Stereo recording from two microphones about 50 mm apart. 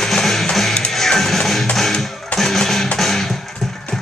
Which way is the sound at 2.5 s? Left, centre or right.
Centre.